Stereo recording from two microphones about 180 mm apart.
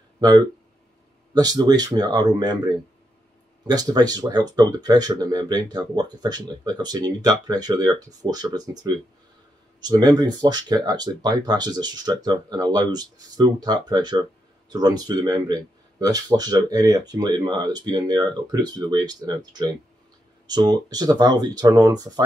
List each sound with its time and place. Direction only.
0.2 s speech: 20° right (ahead or behind)
3.6 s speech: 20° right (ahead or behind)